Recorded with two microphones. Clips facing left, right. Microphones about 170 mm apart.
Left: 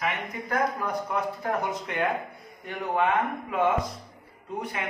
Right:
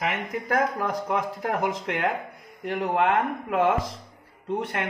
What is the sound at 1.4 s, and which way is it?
A man's voice, 90° right.